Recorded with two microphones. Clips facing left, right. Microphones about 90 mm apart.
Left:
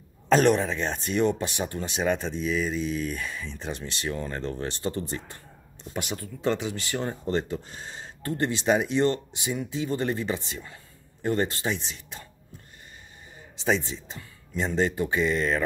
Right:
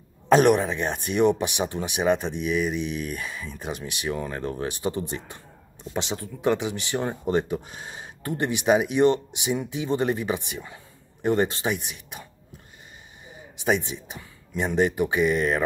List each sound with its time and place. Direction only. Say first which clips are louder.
0.3 s speech: right 3 dB; 15° right (ahead or behind)
13.7 s speech: right 2 dB; 15° right (ahead or behind)